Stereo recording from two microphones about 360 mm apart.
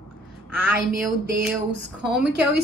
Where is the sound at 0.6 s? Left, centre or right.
Right.